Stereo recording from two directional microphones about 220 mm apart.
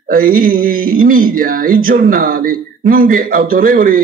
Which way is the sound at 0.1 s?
40° right (ahead or behind).